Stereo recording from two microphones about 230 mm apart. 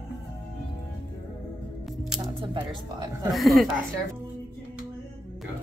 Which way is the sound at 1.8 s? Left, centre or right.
Centre.